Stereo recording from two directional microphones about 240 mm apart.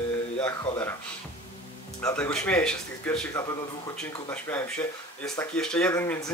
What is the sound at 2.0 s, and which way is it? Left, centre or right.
A man's voice, centre.